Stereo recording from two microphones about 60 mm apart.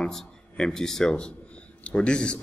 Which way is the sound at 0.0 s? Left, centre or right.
Centre.